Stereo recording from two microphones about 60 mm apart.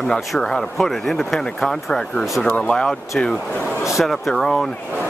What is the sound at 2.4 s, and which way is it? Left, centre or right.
Speech, left.